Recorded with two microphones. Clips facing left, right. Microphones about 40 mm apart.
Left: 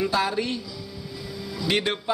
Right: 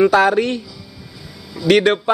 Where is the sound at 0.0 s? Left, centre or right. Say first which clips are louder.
Right 11 dB; right.